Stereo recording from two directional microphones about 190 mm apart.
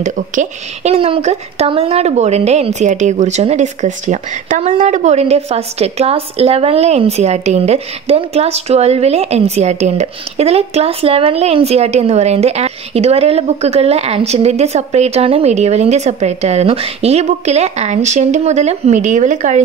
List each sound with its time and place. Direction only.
0.0 s speech: 35° right (ahead or behind)